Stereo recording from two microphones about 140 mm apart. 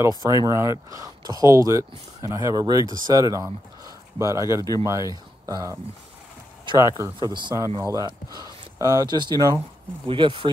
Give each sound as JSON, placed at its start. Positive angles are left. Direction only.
{"t": 0.2, "sound": "speech", "side_deg": -25}
{"t": 6.8, "sound": "speech", "side_deg": -25}